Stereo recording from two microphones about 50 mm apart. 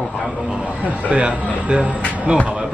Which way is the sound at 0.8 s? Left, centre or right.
Right.